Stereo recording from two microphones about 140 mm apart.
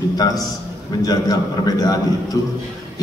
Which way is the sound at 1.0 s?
25° left (ahead or behind).